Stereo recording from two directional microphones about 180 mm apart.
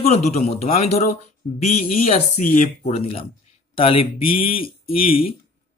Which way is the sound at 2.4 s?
50° left (ahead or behind).